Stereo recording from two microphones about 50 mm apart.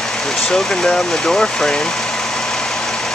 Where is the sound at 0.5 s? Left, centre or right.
Centre.